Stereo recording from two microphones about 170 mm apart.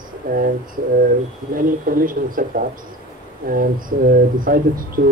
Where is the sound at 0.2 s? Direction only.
55° right (ahead or behind).